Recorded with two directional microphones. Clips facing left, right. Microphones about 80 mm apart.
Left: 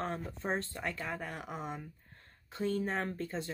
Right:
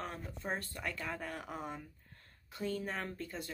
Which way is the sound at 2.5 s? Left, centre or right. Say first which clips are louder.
Left 5 dB; left.